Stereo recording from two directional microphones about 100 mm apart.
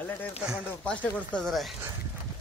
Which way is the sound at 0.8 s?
10° left (ahead or behind).